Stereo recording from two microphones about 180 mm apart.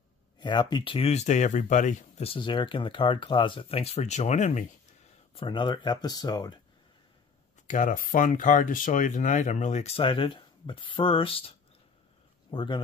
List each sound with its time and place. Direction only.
0.4 s speech: 25° left (ahead or behind); by 4.6 s 40° left (ahead or behind)
5.3 s speech: 25° left (ahead or behind)
7.6 s speech: 45° left (ahead or behind); by 12.8 s 25° left (ahead or behind)